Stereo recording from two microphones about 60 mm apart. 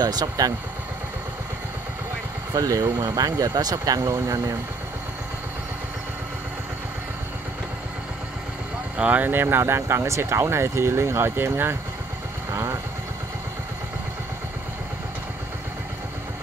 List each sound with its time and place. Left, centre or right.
0.0 s speech: right
2.5 s speech: right
8.9 s speech: right